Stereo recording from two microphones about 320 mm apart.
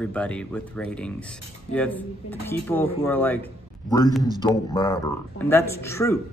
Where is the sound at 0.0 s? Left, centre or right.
Centre.